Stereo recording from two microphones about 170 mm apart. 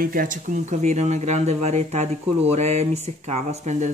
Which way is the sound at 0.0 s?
55° right (ahead or behind).